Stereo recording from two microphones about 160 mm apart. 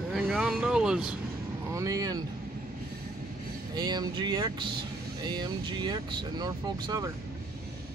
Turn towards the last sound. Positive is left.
turn(degrees=-25)  # may be behind; listen again after turning